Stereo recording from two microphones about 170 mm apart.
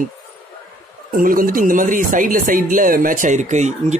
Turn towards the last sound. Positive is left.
turn(degrees=-45)  # may be behind; listen again after turning